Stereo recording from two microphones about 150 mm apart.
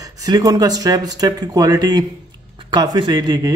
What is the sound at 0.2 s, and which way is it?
Speech, 25° right (ahead or behind).